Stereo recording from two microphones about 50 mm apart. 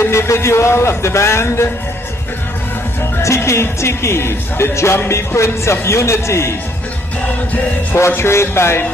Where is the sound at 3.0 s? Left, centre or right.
Left.